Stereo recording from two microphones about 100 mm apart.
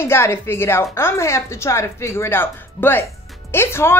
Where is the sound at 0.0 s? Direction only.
25° left (ahead or behind).